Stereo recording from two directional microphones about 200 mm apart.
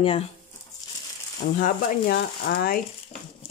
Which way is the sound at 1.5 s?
45° left (ahead or behind).